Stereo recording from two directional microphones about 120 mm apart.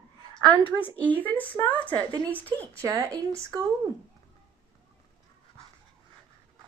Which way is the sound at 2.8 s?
30° right (ahead or behind).